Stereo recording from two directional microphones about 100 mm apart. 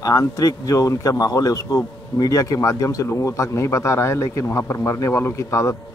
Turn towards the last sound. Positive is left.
turn(degrees=30)  # may be behind; listen again after turning